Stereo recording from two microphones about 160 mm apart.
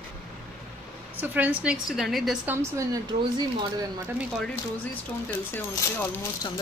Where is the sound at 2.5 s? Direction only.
15° right (ahead or behind).